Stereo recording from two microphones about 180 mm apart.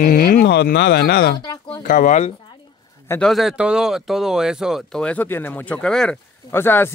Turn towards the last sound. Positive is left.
turn(degrees=10)  # may be behind; listen again after turning